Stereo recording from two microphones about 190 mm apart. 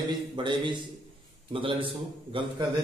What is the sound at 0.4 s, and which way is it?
A man's voice, 25° right (ahead or behind).